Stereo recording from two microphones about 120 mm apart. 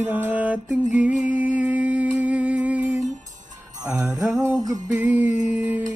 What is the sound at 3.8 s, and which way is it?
Mantra, 10° right (ahead or behind).